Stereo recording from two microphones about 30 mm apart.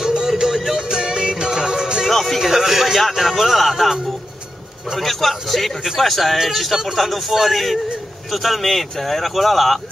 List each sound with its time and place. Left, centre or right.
0.0 s music: right
2.0 s music: centre
2.4 s speech: centre
4.9 s speech: centre